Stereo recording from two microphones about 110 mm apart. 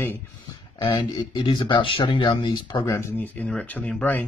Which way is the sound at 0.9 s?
40° left (ahead or behind).